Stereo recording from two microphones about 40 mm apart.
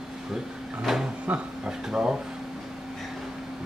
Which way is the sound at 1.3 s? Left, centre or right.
Right.